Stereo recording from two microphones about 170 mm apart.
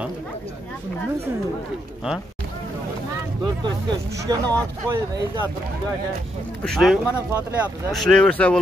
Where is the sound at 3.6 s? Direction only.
20° right (ahead or behind).